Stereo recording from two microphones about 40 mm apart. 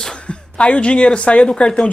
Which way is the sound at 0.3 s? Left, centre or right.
Left.